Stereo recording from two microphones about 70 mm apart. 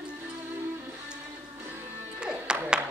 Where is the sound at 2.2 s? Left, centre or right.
Centre.